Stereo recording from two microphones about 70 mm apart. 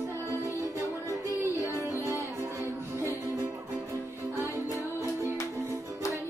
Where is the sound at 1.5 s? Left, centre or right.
Left.